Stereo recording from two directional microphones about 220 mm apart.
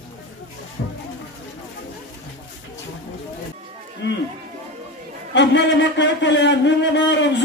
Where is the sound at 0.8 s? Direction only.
45° left (ahead or behind).